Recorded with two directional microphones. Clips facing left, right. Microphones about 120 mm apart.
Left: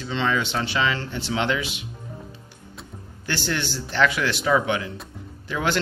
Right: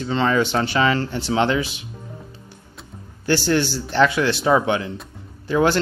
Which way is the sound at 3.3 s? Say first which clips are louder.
Right 8 dB; 35° right (ahead or behind).